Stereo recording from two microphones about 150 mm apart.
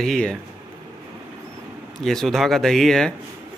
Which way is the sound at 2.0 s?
5° left (ahead or behind).